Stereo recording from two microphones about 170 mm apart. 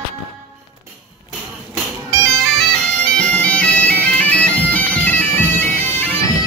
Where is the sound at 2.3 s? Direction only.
5° left (ahead or behind).